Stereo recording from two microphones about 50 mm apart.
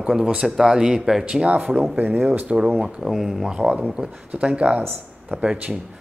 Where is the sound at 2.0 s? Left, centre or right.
Right.